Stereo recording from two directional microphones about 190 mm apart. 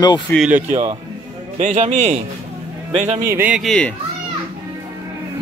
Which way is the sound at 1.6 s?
40° right (ahead or behind).